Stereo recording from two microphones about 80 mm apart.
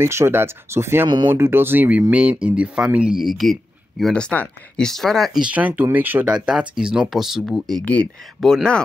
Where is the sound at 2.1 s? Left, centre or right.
Centre.